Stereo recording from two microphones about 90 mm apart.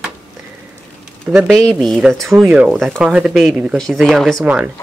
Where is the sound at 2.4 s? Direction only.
10° right (ahead or behind).